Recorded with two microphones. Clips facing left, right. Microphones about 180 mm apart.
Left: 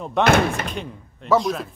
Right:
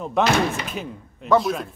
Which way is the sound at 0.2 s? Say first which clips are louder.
Left 2 dB; 55° left (ahead or behind).